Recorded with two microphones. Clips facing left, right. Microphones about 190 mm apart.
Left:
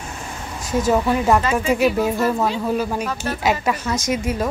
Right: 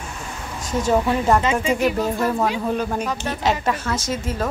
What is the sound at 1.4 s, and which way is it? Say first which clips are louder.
Speech: even; 20° right (ahead or behind).